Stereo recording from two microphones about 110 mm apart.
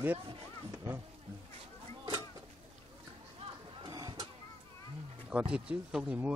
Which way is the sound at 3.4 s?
55° right (ahead or behind).